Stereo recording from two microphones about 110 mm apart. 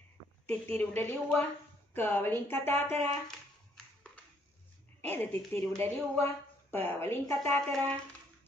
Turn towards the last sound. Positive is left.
turn(degrees=10)  # may be behind; listen again after turning